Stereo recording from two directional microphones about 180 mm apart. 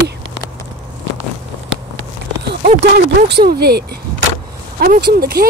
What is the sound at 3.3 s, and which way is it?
Speech, 60° right (ahead or behind).